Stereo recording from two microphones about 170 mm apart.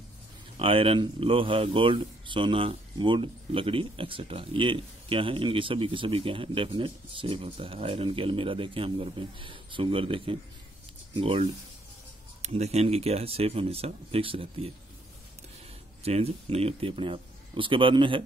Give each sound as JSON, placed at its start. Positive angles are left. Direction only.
{"t": 0.6, "sound": "speech", "side_deg": -30}
{"t": 16.0, "sound": "speech", "side_deg": -35}